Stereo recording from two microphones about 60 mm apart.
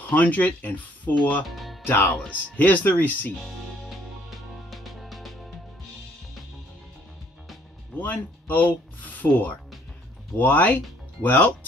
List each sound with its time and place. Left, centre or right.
0.1 s speech: left
1.5 s music: centre
2.2 s speech: left
3.3 s music: centre
8.0 s speech: left